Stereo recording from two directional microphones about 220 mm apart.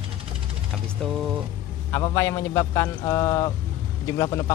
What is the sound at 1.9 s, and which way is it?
A man's voice, 15° left (ahead or behind).